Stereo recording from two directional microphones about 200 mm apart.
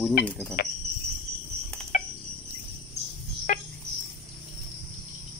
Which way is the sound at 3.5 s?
40° left (ahead or behind).